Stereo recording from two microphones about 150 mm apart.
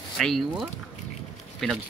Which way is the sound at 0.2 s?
Centre (ahead or behind).